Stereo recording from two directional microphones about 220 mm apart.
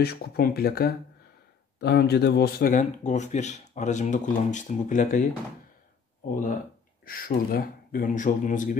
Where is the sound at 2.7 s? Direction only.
35° left (ahead or behind).